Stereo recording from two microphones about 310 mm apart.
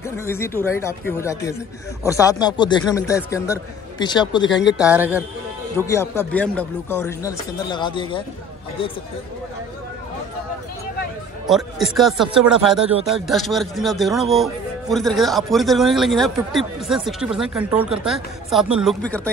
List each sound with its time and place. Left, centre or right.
0.2 s speech: centre
4.4 s speech: left
4.7 s speech: centre
5.9 s speech: centre
11.4 s speech: centre